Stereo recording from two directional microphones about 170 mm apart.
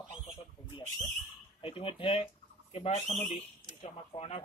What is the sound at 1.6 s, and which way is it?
Speech, 30° left (ahead or behind).